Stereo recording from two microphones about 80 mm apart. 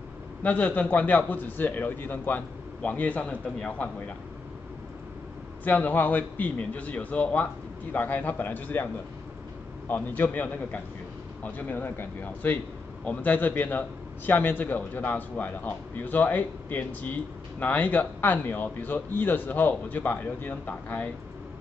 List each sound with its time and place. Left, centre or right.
0.4 s a man's voice: centre
5.6 s a man's voice: left
9.8 s a man's voice: left